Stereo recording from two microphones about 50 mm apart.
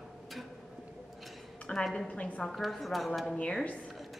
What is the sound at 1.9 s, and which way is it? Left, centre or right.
Speech, left.